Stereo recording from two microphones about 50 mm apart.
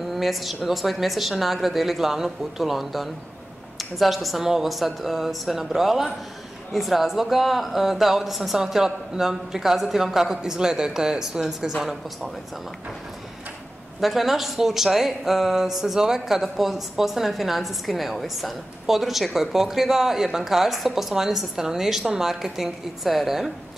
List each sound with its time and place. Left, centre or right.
0.0 s a sound: centre
0.7 s speech: centre
14.0 s speech: centre